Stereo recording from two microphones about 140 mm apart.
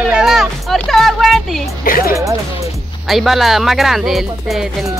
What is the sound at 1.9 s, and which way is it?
Speech, 90° left.